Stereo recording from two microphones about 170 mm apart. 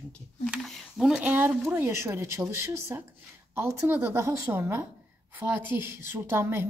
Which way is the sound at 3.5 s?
15° right (ahead or behind).